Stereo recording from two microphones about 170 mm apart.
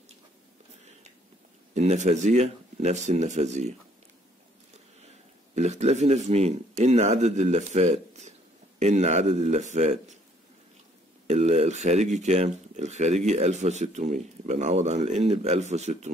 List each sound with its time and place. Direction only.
1.7 s speech: 45° right (ahead or behind)
5.5 s speech: 40° right (ahead or behind)
11.2 s speech: 40° right (ahead or behind)